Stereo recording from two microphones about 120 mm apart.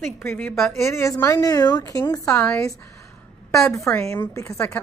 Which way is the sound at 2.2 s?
15° left (ahead or behind).